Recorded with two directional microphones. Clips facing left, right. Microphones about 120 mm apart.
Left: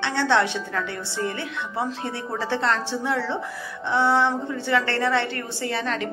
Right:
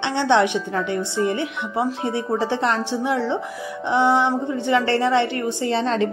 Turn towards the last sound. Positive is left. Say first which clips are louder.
# right 6 dB
turn(degrees=-25)  # may be behind; listen again after turning